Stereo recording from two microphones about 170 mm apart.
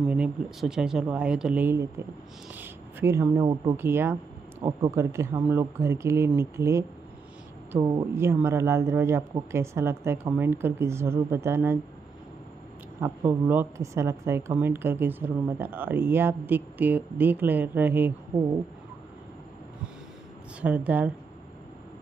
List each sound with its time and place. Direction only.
0.0 s a woman's voice: 5° right (ahead or behind)
2.5 s a sound: 10° right (ahead or behind)
3.3 s speech: 30° right (ahead or behind)
3.7 s a woman's voice: 15° right (ahead or behind)
8.2 s a woman's voice: 15° right (ahead or behind)
13.0 s a woman's voice: 15° right (ahead or behind)
20.6 s a woman's voice: 10° right (ahead or behind)